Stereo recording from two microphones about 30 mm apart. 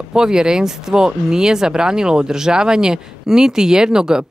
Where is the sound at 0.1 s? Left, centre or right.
Right.